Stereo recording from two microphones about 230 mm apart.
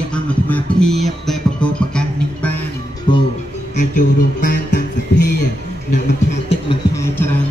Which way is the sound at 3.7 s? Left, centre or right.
Left.